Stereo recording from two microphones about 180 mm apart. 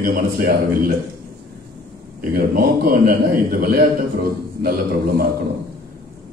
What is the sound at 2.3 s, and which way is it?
A man's voice, 55° right (ahead or behind).